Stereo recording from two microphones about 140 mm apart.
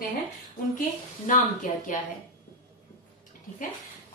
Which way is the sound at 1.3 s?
70° left (ahead or behind).